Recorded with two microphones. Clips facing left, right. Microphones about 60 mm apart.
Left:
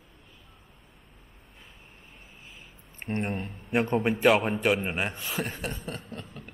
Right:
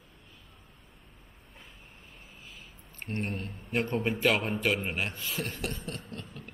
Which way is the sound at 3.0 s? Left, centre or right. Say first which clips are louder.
Left 4 dB; left.